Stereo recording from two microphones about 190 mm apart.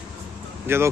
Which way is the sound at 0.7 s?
10° right (ahead or behind).